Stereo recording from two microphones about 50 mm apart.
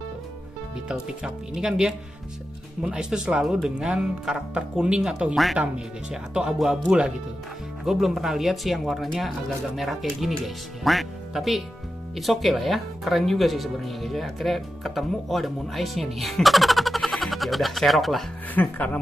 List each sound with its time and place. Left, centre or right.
0.8 s speech: centre
5.3 s speech: centre
5.6 s speech: centre
7.8 s speech: centre
18.5 s speech: left